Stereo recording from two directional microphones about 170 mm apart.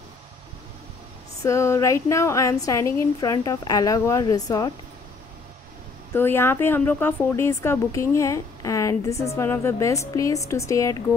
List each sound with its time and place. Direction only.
1.4 s a woman's voice: 15° left (ahead or behind)
6.1 s speech: 15° left (ahead or behind)